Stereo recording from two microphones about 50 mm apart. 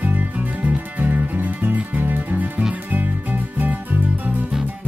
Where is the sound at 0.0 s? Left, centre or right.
Right.